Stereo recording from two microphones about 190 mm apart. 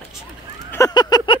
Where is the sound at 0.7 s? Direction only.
15° left (ahead or behind).